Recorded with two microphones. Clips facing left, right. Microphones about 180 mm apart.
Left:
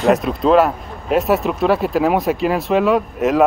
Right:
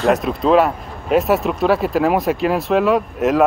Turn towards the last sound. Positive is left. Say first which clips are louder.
# even
turn(degrees=0)  # may be behind; listen again after turning